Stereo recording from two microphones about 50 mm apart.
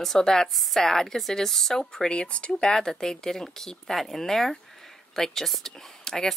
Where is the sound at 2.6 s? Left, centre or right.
Centre.